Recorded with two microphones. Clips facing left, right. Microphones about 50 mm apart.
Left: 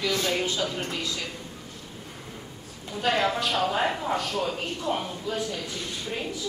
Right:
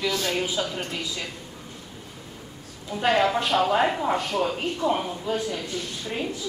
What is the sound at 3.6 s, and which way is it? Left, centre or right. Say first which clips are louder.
Speech: right 5 dB; centre.